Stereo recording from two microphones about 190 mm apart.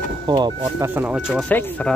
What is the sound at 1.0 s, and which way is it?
Speech, 5° right (ahead or behind).